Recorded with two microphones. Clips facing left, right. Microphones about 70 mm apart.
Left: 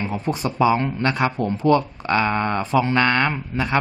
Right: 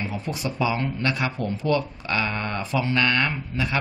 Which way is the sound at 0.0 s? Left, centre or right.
Left.